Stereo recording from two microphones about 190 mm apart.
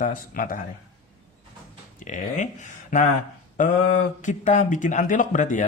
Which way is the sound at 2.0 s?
40° left (ahead or behind).